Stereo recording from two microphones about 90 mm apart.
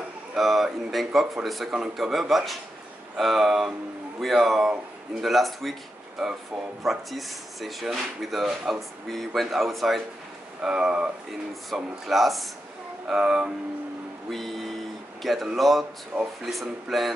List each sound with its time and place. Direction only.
0.3 s speech: 5° right (ahead or behind)
16.1 s speech: 25° right (ahead or behind)
16.4 s speech: centre (ahead or behind)